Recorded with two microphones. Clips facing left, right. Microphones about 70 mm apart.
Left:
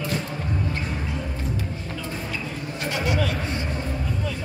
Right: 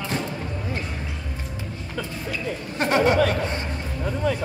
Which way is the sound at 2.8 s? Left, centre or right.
Right.